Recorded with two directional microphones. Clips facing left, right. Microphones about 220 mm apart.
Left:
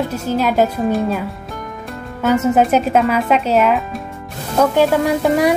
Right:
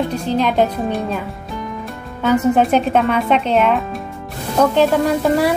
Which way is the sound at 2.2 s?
5° left (ahead or behind).